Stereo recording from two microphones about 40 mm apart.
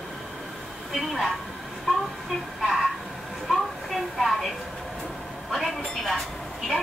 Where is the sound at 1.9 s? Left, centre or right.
Centre.